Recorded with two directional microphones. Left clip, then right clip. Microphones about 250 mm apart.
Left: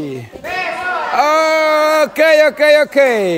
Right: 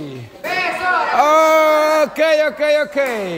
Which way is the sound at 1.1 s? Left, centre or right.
Centre.